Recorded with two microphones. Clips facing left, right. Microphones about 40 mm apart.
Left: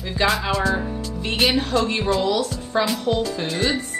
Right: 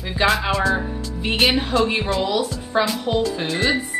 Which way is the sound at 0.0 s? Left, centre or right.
Centre.